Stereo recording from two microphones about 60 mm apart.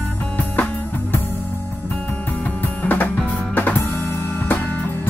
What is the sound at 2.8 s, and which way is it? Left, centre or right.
Music, left.